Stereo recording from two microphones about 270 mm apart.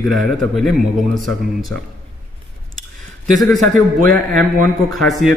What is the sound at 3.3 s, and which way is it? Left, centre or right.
Speech, centre.